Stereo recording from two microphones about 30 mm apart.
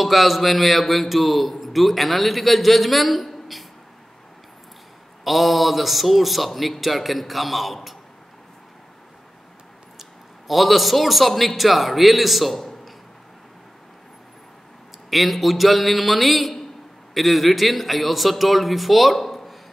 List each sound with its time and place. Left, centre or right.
0.0 s a man's voice: centre
5.2 s a man's voice: centre
9.9 s a man's voice: centre
15.0 s a man's voice: centre